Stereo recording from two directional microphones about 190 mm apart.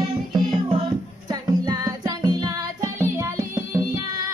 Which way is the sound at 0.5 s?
30° right (ahead or behind).